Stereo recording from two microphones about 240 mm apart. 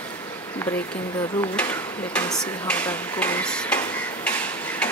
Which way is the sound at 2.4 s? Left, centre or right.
Centre.